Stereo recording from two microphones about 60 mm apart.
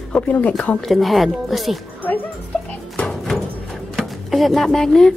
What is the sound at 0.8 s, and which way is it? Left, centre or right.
Speech, centre.